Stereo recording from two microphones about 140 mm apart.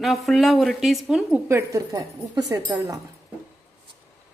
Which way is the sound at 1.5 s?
20° right (ahead or behind).